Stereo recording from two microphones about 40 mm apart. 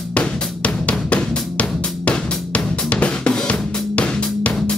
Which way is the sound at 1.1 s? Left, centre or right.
Left.